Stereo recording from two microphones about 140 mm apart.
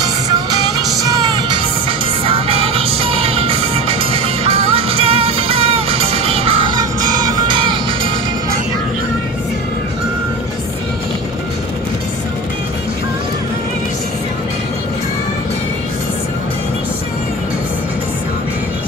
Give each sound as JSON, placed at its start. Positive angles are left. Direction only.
{"t": 1.0, "sound": "music", "side_deg": -30}